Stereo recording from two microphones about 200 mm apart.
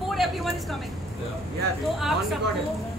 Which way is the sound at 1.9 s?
Centre (ahead or behind).